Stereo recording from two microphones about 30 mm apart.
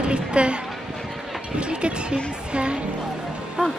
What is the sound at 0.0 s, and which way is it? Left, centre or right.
Speech, right.